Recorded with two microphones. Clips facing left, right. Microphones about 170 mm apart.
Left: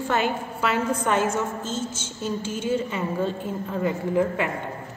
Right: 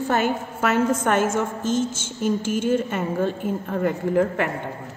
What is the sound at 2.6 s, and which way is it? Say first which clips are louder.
A woman's voice: right 1 dB; 50° right (ahead or behind).